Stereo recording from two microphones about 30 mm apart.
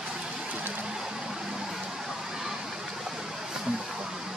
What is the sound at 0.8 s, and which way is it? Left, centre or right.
Vehicle, centre.